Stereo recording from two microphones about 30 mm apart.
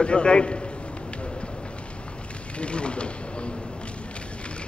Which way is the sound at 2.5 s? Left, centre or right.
Left.